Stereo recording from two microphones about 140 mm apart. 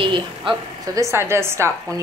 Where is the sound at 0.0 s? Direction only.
35° right (ahead or behind).